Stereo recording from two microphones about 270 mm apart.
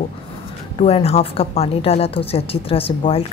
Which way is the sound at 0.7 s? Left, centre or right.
Left.